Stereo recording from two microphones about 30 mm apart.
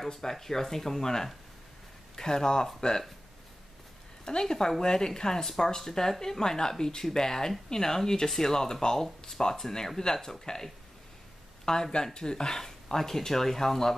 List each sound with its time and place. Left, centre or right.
0.1 s speech: centre
4.2 s speech: left